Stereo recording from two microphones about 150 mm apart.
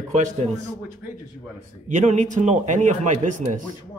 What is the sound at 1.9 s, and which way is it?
A man's voice, 50° right (ahead or behind).